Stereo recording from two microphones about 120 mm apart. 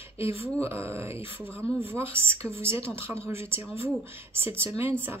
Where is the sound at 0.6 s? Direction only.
20° right (ahead or behind).